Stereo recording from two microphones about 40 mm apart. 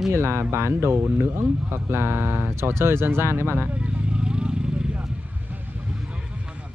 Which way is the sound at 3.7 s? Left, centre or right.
Right.